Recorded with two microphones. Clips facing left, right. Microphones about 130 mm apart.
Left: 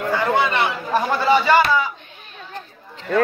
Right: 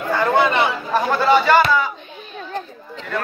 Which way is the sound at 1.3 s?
10° left (ahead or behind).